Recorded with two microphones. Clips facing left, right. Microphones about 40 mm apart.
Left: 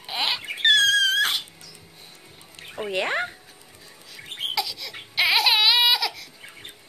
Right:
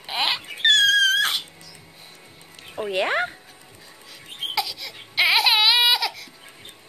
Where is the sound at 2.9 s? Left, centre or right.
Centre.